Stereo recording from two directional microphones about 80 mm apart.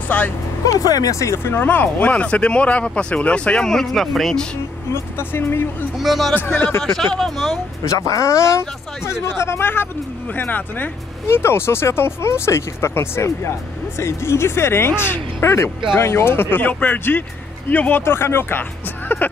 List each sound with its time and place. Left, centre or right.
0.1 s speech: centre
0.7 s speech: left
1.3 s speech: left; by 4.5 s centre
4.9 s speech: left
5.9 s speech: centre
6.3 s speech: left
6.8 s speech: centre
7.8 s speech: left